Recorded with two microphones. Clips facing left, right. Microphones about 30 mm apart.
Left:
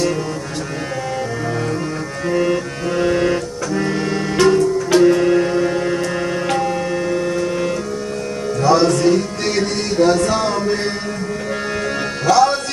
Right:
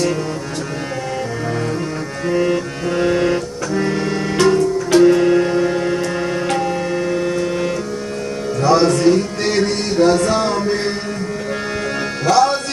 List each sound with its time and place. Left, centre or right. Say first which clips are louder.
2.4 s music: even; centre
8.5 s music: even; centre
12.3 s music: left 1 dB; centre